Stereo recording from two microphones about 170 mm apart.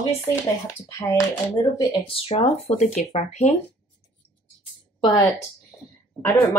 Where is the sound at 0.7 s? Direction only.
15° left (ahead or behind).